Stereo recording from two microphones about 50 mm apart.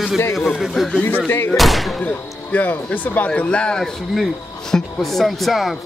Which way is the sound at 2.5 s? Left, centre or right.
Left.